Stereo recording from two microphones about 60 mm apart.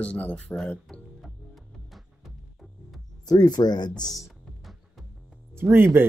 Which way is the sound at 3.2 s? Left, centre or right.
Left.